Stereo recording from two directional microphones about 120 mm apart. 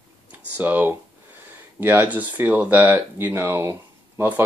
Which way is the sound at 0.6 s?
15° right (ahead or behind).